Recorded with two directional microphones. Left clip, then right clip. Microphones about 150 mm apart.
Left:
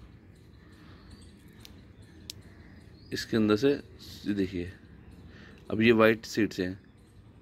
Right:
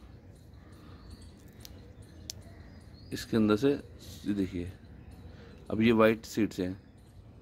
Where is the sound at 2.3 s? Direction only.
30° right (ahead or behind).